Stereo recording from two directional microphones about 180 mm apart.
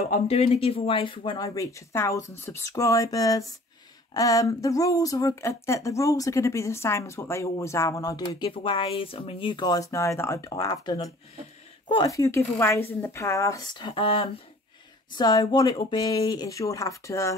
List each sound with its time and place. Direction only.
0.1 s speech: 35° left (ahead or behind); by 17.4 s 15° left (ahead or behind)